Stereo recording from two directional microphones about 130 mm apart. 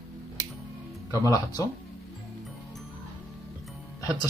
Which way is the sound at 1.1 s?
25° left (ahead or behind).